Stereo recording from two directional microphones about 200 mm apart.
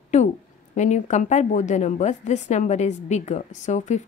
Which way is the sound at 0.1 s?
40° left (ahead or behind).